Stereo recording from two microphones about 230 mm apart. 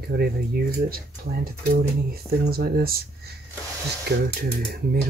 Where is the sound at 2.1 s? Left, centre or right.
Right.